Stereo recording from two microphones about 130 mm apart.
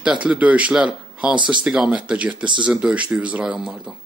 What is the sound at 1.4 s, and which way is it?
Speech, 35° right (ahead or behind).